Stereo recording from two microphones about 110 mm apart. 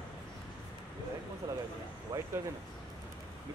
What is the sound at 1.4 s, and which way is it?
Speech, 35° right (ahead or behind).